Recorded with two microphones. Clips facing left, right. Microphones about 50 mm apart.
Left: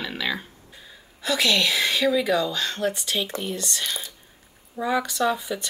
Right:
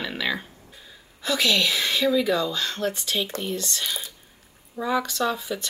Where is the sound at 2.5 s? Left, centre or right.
Left.